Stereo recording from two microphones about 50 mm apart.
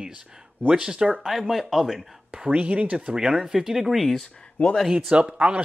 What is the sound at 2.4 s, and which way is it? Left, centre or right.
Speech, right.